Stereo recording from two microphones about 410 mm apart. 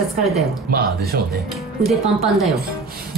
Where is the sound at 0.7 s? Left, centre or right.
Right.